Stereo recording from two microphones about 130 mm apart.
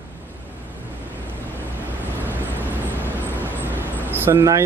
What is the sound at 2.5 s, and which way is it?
Vehicle, 15° left (ahead or behind).